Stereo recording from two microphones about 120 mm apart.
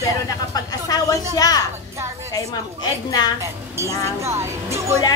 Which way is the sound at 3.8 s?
25° right (ahead or behind).